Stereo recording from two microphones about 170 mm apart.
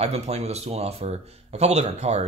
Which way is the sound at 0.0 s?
40° right (ahead or behind).